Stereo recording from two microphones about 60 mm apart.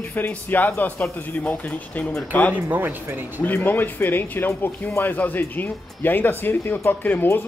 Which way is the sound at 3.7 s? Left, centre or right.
Left.